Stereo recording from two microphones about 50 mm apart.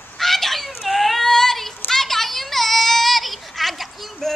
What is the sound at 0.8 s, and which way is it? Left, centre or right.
Child singing, centre.